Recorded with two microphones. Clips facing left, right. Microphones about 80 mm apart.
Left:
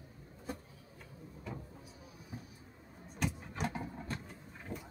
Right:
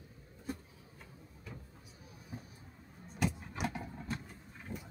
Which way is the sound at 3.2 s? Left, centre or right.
Centre.